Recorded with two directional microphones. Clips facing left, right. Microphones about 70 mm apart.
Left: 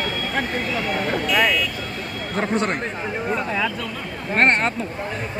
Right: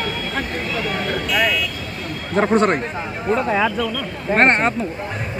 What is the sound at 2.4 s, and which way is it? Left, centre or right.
Speech, right.